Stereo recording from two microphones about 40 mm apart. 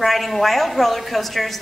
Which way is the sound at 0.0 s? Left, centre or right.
Centre.